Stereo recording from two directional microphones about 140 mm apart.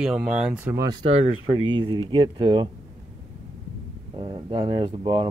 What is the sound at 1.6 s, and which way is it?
Speech, 35° right (ahead or behind).